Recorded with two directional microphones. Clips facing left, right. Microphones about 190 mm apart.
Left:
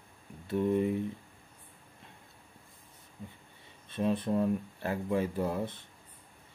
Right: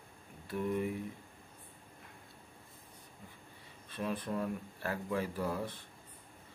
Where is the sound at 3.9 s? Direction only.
25° left (ahead or behind).